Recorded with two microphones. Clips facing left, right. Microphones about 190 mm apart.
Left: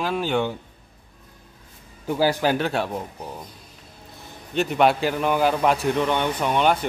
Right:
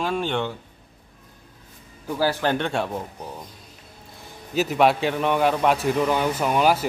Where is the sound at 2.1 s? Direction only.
15° left (ahead or behind).